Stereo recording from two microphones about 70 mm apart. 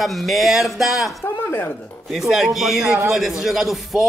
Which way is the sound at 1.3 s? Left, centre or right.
Left.